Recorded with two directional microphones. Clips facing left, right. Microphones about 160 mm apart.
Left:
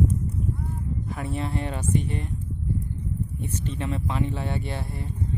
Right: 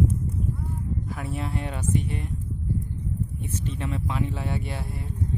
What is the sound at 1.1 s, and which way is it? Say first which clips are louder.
Speech: left 4 dB; 5° right (ahead or behind).